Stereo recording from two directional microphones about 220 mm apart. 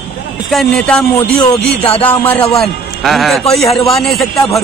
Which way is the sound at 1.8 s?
25° left (ahead or behind).